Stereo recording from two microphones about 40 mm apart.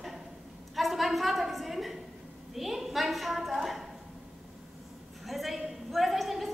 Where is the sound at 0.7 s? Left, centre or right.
Centre.